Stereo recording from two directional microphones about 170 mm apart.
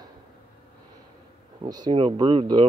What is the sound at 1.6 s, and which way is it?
Speech, 25° right (ahead or behind).